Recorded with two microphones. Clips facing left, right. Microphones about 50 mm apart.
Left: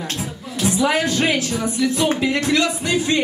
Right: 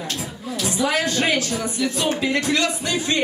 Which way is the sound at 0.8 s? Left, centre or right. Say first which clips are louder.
Left 1 dB; left.